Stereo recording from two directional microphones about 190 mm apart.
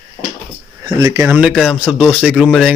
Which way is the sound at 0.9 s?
20° right (ahead or behind).